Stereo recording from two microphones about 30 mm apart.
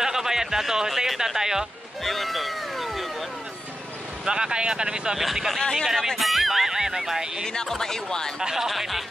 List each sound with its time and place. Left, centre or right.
0.0 s speech: centre
2.0 s music: centre
4.3 s speech: right
5.1 s speech: centre
5.6 s speech: centre
6.1 s speech: centre
7.6 s speech: centre
8.5 s speech: centre